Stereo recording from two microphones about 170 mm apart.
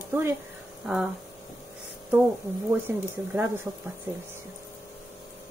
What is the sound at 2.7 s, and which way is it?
Speech, 10° right (ahead or behind).